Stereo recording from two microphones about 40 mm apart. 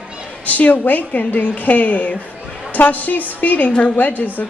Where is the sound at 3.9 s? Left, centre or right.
Left.